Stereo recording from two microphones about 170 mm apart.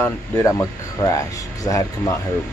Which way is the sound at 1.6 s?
20° left (ahead or behind).